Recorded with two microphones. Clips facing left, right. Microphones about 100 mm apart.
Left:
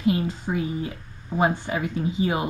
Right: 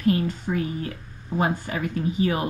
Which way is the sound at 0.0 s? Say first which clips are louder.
Right 1 dB; 20° left (ahead or behind).